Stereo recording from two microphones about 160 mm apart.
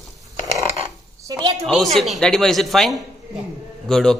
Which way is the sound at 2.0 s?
Centre (ahead or behind).